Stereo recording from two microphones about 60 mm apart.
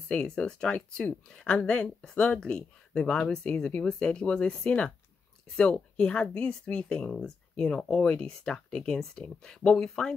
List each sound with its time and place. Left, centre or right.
0.1 s speech: centre